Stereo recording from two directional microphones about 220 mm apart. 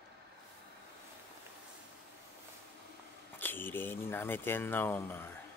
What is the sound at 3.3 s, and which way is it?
Speech, 10° left (ahead or behind).